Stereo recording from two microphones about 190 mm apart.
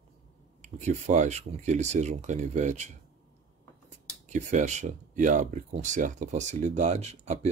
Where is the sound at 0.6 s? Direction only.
40° right (ahead or behind).